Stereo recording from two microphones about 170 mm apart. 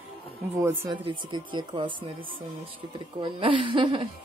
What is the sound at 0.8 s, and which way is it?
Speech, 25° right (ahead or behind).